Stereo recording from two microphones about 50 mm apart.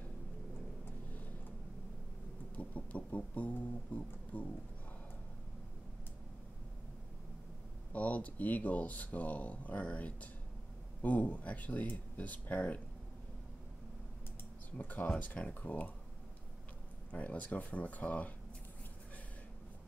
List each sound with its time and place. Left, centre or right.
2.5 s speech: left
7.9 s speech: left
14.8 s speech: left
17.1 s speech: left